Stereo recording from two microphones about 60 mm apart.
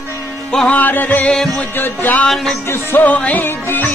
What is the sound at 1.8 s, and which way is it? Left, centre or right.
Music, left.